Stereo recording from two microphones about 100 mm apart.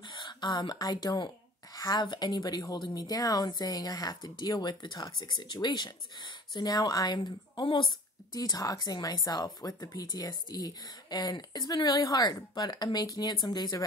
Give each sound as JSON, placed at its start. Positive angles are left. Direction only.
{"t": 0.1, "sound": "a woman's voice", "side_deg": 45}